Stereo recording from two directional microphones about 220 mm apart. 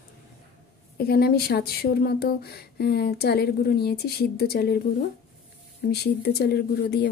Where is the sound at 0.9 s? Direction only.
45° left (ahead or behind).